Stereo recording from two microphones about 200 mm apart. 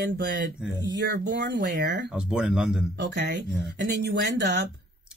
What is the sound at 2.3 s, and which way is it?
Speech, 5° right (ahead or behind).